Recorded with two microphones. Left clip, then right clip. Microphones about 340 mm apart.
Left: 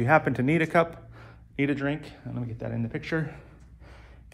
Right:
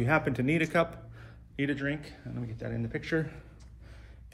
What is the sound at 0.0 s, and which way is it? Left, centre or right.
Speech, centre.